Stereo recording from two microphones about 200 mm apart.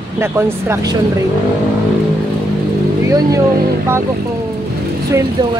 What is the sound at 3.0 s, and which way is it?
Speech, 15° right (ahead or behind).